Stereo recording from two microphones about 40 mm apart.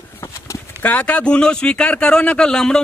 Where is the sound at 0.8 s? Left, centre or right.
Left.